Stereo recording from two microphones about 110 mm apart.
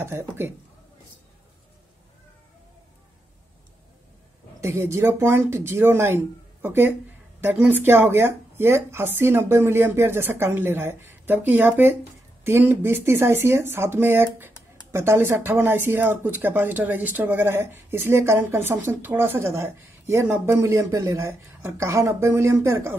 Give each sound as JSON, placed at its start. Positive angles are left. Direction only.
{"t": 0.0, "sound": "speech", "side_deg": -25}
{"t": 4.6, "sound": "speech", "side_deg": -25}